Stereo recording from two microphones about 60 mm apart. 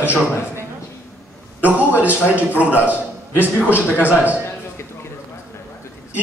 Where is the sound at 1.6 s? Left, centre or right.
Right.